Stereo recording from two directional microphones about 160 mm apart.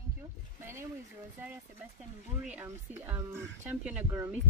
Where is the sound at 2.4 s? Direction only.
10° right (ahead or behind).